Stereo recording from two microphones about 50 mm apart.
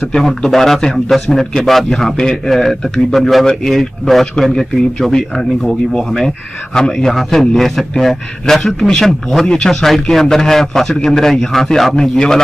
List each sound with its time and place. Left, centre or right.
0.1 s a man's voice: centre
6.2 s a man's voice: centre